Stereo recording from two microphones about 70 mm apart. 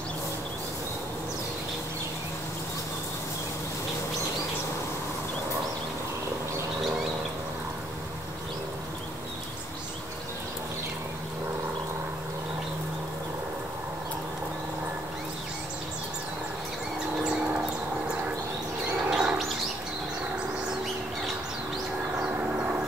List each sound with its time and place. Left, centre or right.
19.0 s bird: centre
22.3 s train: right